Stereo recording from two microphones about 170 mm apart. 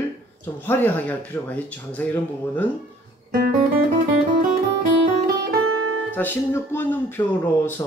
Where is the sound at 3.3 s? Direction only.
55° right (ahead or behind).